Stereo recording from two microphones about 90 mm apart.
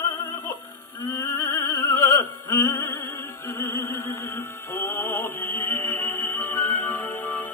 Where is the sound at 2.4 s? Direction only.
40° left (ahead or behind).